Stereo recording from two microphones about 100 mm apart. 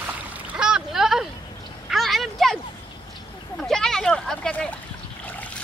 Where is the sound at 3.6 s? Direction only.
5° left (ahead or behind).